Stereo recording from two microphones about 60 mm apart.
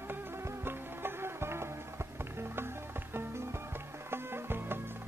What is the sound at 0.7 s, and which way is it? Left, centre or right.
Music, right.